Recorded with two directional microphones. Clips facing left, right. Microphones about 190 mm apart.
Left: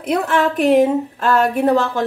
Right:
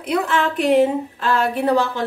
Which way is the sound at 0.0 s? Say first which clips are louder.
Left 3 dB; 45° left (ahead or behind).